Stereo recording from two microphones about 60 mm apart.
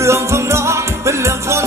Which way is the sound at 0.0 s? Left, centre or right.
Right.